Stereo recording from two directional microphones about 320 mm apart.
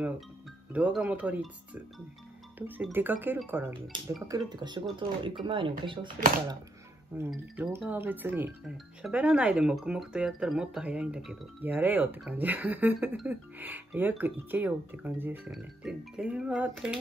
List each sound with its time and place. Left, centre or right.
0.7 s speech: centre
2.6 s speech: centre
7.2 s speech: centre